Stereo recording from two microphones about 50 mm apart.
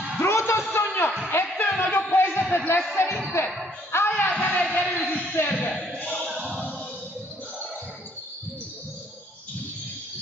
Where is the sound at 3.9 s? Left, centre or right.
Left.